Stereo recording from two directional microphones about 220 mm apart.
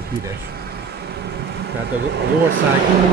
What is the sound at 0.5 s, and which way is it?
Vehicle, 45° right (ahead or behind).